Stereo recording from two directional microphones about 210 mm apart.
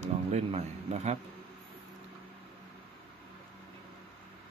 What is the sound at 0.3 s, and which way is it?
Speech, 30° right (ahead or behind).